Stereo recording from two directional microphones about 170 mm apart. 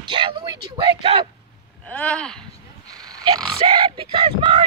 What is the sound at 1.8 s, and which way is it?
Speech, 5° left (ahead or behind).